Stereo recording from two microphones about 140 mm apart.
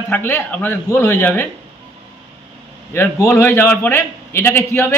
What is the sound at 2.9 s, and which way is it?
A man's voice, 15° left (ahead or behind).